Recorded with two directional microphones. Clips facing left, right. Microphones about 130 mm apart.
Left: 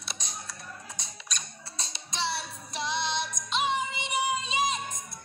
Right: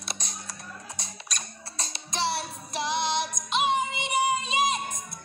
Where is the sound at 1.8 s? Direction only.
50° right (ahead or behind).